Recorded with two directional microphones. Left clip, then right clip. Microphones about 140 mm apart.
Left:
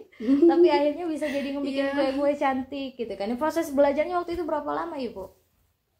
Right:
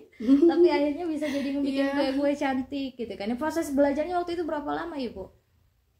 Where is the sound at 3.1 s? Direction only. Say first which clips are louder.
Left 4 dB; 20° left (ahead or behind).